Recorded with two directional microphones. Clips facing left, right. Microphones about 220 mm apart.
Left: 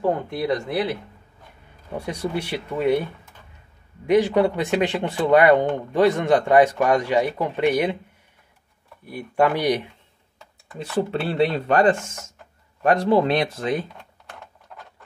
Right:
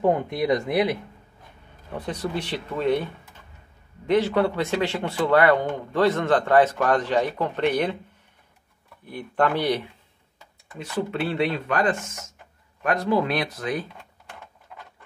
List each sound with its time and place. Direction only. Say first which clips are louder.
0.0 s speech: right 1 dB; 15° right (ahead or behind)
2.0 s a man's voice: left 2 dB; 10° left (ahead or behind)
4.0 s a man's voice: left 3 dB; 15° left (ahead or behind)
9.0 s a man's voice: left 3 dB; 10° left (ahead or behind)
10.8 s speech: left 3 dB; 30° left (ahead or behind)